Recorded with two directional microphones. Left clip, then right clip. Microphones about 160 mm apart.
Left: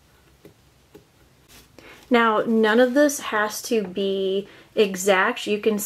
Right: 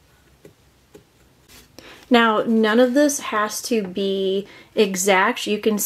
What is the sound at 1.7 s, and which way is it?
A woman's voice, 15° right (ahead or behind).